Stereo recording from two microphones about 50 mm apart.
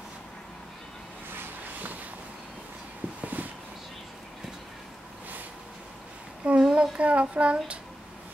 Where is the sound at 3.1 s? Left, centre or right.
Right.